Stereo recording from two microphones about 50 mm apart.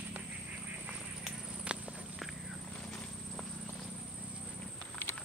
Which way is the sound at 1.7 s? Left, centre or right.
Right.